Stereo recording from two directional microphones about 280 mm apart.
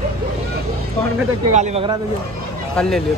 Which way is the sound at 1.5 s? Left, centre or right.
Right.